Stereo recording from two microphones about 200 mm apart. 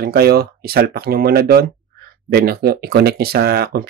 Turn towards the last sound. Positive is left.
turn(degrees=-50)  # may be behind; listen again after turning